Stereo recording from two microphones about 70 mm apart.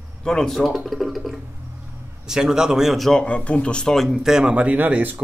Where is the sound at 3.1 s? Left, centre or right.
Centre.